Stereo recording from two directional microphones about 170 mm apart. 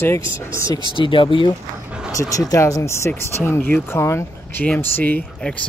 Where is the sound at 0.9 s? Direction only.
30° left (ahead or behind).